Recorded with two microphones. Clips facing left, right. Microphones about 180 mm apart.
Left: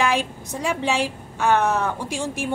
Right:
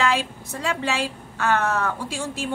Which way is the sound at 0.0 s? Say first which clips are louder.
Left 1 dB; 15° left (ahead or behind).